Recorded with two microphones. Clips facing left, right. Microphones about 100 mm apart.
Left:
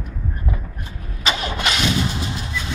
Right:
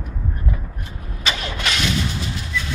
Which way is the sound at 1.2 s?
20° left (ahead or behind).